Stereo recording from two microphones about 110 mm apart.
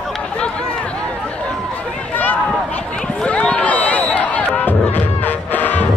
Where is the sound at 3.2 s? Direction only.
10° left (ahead or behind).